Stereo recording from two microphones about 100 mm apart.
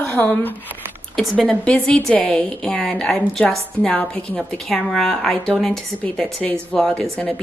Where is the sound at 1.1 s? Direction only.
5° left (ahead or behind).